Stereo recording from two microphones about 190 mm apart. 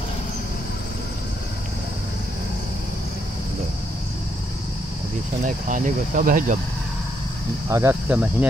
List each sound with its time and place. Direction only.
5.4 s speech: 45° right (ahead or behind)
7.7 s speech: 10° right (ahead or behind)